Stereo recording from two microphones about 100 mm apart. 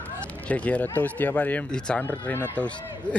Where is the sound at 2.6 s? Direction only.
10° left (ahead or behind).